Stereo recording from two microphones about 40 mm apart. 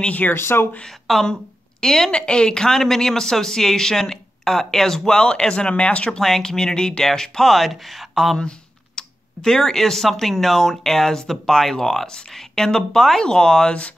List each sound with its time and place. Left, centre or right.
0.3 s speech: left
0.8 s speech: centre
1.2 s speech: centre
6.2 s speech: centre
8.4 s speech: left